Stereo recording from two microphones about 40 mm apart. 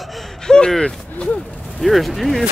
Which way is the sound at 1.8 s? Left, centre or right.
Centre.